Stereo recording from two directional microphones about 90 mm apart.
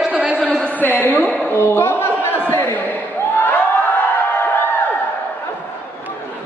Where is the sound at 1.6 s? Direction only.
30° left (ahead or behind).